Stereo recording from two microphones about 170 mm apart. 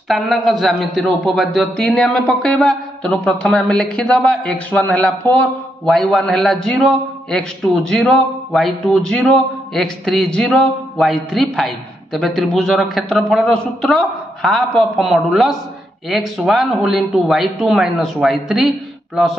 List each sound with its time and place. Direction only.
0.1 s a man's voice: centre (ahead or behind)